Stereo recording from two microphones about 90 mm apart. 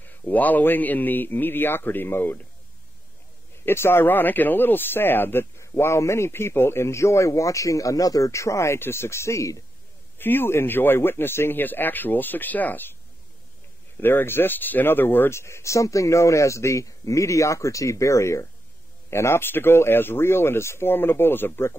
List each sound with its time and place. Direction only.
0.2 s speech: 20° left (ahead or behind)
3.6 s speech: 25° left (ahead or behind)
10.1 s speech: 25° left (ahead or behind)
14.0 s speech: 25° left (ahead or behind)